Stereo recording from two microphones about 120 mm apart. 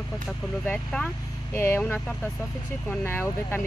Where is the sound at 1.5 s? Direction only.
20° left (ahead or behind).